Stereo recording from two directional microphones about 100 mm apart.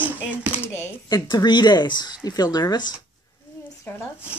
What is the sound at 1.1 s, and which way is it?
Speech, 45° left (ahead or behind).